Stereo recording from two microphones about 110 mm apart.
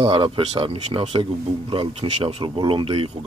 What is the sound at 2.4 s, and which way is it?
Speech, 50° right (ahead or behind).